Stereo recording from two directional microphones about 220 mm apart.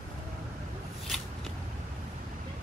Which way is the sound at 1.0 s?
Centre (ahead or behind).